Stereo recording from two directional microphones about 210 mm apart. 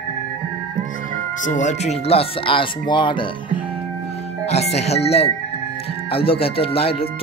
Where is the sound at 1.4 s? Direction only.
35° left (ahead or behind).